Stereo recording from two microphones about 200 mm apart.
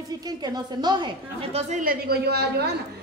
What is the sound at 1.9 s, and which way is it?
Speech, 50° right (ahead or behind).